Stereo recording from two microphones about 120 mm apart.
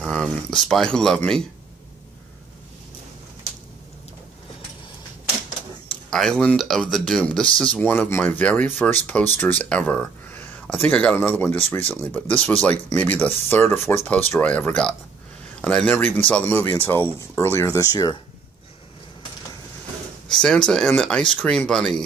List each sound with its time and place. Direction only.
0.0 s speech: 5° left (ahead or behind)
5.9 s speech: 5° left (ahead or behind); by 18.1 s 30° left (ahead or behind)
20.2 s speech: 5° left (ahead or behind)